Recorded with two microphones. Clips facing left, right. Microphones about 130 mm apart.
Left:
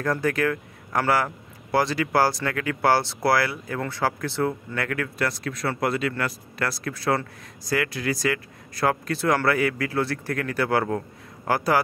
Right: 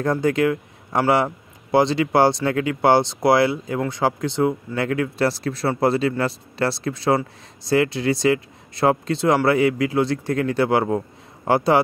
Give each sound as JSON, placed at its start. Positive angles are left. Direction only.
{"t": 0.0, "sound": "speech", "side_deg": -20}